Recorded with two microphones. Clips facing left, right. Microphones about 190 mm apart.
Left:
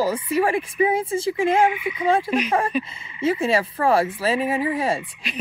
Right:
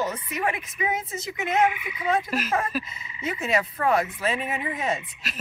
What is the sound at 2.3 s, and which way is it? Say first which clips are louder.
Speech: left 5 dB; 5° right (ahead or behind).